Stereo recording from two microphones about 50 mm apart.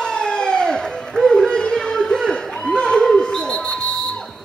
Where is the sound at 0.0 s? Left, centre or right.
Centre.